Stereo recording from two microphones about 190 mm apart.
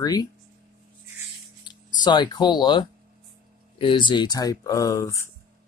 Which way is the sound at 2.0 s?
25° left (ahead or behind).